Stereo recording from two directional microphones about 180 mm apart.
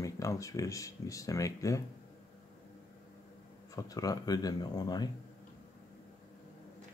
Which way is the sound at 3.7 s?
20° left (ahead or behind).